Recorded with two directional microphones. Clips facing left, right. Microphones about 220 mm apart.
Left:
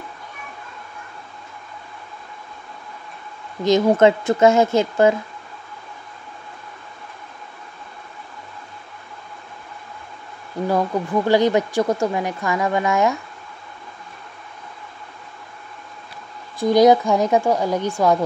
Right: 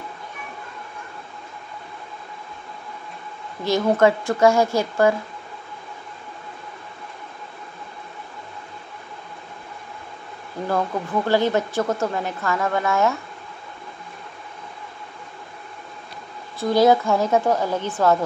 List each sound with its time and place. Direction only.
3.6 s a woman's voice: 20° left (ahead or behind)
10.7 s speech: 15° left (ahead or behind)
16.5 s speech: 15° left (ahead or behind)